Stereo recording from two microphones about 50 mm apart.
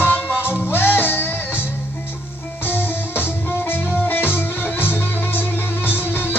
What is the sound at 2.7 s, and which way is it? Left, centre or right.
Music, left.